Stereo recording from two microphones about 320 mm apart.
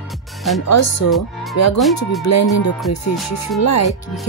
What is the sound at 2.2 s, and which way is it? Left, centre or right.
Music, left.